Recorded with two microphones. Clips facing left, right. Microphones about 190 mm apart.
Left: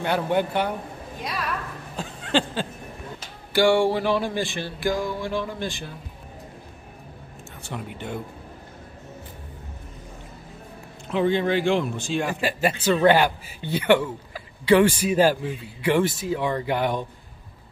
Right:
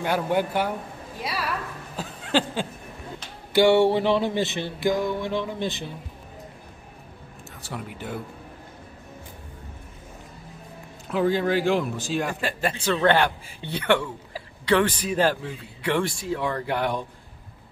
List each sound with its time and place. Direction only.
0.0 s a man's voice: 5° right (ahead or behind)
2.0 s a sound: 5° right (ahead or behind)
3.5 s music: 20° right (ahead or behind)
7.6 s speech: 5° right (ahead or behind)
11.1 s speech: 5° right (ahead or behind)